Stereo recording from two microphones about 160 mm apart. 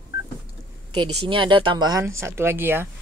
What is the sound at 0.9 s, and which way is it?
A woman's voice, 30° right (ahead or behind).